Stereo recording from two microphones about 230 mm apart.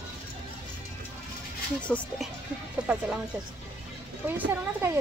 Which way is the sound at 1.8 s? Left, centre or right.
Centre.